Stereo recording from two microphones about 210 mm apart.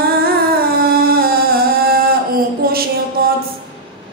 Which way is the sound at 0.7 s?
45° right (ahead or behind).